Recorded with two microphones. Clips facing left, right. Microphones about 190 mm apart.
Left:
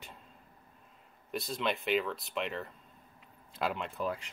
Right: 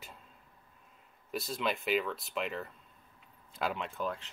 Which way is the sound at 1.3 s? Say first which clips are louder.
Even; centre (ahead or behind).